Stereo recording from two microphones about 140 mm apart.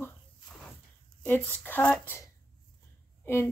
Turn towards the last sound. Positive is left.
turn(degrees=15)  # may be behind; listen again after turning